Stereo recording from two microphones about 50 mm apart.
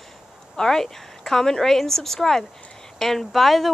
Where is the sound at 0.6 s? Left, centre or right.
Centre.